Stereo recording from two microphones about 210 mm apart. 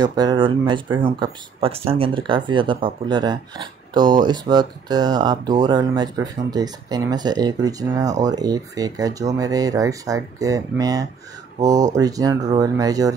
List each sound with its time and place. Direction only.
0.0 s speech: 20° right (ahead or behind)